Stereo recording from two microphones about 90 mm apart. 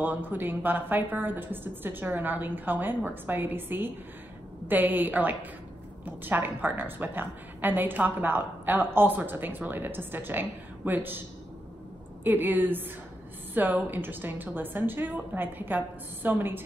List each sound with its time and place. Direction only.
0.0 s a woman's voice: 20° right (ahead or behind)